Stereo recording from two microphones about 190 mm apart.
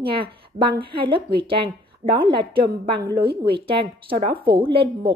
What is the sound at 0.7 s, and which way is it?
A woman's voice, 25° right (ahead or behind).